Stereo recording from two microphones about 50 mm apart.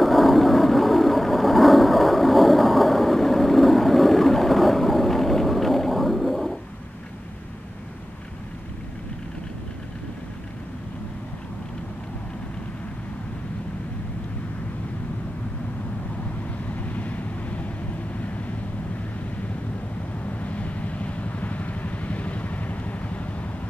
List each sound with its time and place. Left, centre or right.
0.0 s vehicle: centre
16.7 s vehicle: left
20.3 s vehicle: left